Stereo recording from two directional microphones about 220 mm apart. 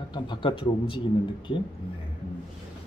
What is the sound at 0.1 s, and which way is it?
Speech, 20° left (ahead or behind).